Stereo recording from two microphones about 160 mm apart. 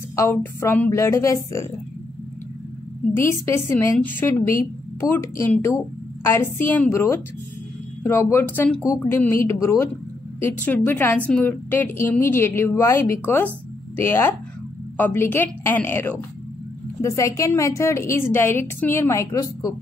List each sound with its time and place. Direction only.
0.1 s a woman's voice: 15° left (ahead or behind)
3.3 s a woman's voice: 15° left (ahead or behind)